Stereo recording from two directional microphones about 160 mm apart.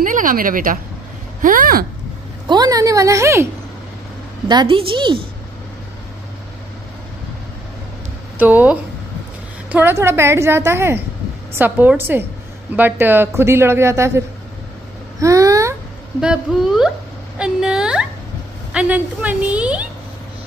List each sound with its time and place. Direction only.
0.0 s speech: 55° right (ahead or behind)
2.4 s a woman's voice: 25° right (ahead or behind)
4.5 s a woman's voice: 30° right (ahead or behind)
8.4 s a woman's voice: 10° right (ahead or behind)
15.1 s a sound: 20° right (ahead or behind)
16.2 s a woman's voice: 5° right (ahead or behind)
17.4 s a sound: 5° right (ahead or behind)
18.7 s a woman's voice: 10° right (ahead or behind)